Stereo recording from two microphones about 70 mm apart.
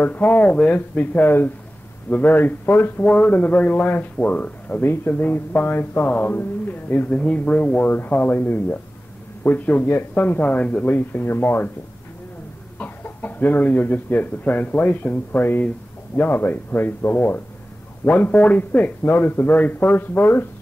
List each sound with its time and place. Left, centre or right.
0.0 s speech: left
3.0 s speech: centre
4.8 s speech: left
5.1 s speech: left
7.1 s speech: centre
12.7 s speech: left